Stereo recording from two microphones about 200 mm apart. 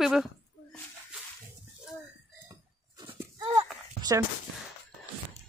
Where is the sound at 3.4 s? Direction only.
20° right (ahead or behind).